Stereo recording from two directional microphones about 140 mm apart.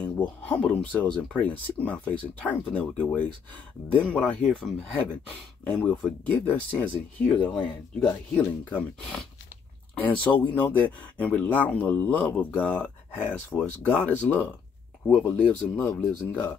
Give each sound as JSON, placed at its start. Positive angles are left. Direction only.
{"t": 0.5, "sound": "speech", "side_deg": 10}
{"t": 13.1, "sound": "speech", "side_deg": -10}
{"t": 13.7, "sound": "speech", "side_deg": 10}